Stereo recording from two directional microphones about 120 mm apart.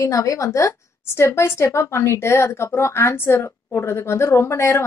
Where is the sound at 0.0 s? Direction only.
25° left (ahead or behind).